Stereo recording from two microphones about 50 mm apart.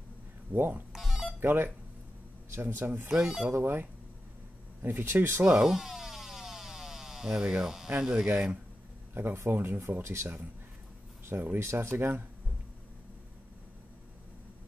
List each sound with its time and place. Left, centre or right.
0.5 s speech: right
0.9 s a sound: centre
1.4 s speech: right
3.1 s speech: centre
3.5 s speech: right
5.1 s speech: right
5.4 s a sound: centre
8.0 s speech: centre
9.1 s speech: right
9.8 s speech: right
11.3 s speech: right
11.6 s speech: right
11.9 s speech: right